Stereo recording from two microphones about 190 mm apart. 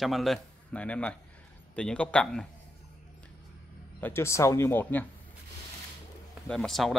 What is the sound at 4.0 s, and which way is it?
Speech, 15° left (ahead or behind).